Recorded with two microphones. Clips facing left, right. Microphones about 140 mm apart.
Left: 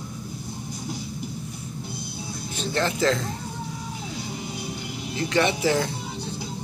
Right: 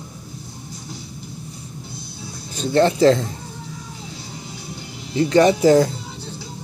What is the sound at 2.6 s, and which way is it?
Speech, 30° right (ahead or behind).